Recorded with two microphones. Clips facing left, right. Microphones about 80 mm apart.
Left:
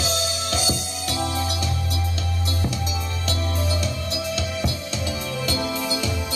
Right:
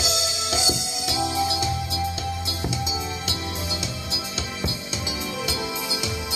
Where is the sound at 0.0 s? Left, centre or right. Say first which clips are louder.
Left 2 dB; centre.